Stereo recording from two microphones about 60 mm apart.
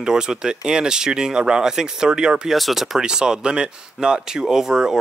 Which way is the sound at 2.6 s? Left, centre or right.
Centre.